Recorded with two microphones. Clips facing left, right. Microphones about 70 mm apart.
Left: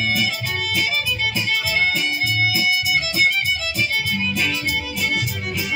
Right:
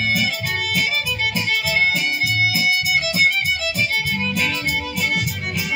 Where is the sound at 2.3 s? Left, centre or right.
Right.